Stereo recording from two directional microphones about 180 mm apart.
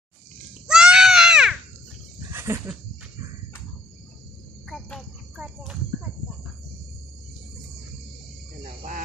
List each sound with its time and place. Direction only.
0.7 s goat: 5° right (ahead or behind)
2.3 s a sound: 15° right (ahead or behind)
4.6 s cricket: 5° left (ahead or behind)